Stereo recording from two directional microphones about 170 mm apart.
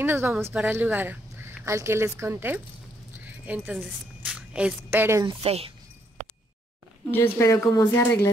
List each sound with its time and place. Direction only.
0.0 s speech: 10° right (ahead or behind)
5.2 s speech: 35° right (ahead or behind)
7.1 s speech: 15° left (ahead or behind)